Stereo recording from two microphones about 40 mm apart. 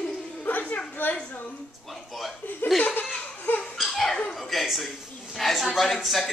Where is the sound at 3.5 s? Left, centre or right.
Left.